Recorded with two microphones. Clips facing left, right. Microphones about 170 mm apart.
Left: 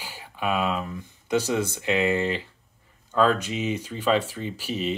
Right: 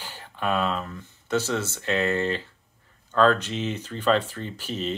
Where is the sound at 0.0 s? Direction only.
10° left (ahead or behind).